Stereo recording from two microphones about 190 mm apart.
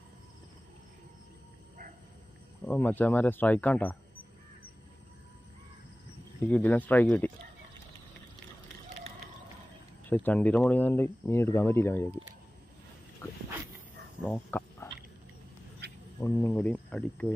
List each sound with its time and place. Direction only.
2.6 s speech: 10° left (ahead or behind)
6.4 s speech: 10° left (ahead or behind)
10.0 s speech: 10° left (ahead or behind)
13.2 s dog: 15° left (ahead or behind)
14.2 s speech: 10° left (ahead or behind)
15.8 s a sound: 60° right (ahead or behind)
16.2 s speech: 15° left (ahead or behind)